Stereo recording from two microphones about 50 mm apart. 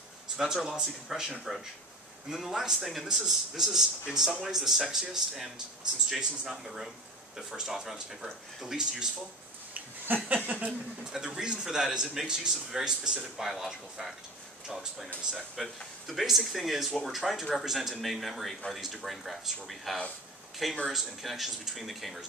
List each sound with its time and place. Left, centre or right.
0.4 s a man's voice: centre
9.8 s a sound: right
10.3 s speech: right
11.1 s a man's voice: centre
15.3 s speech: centre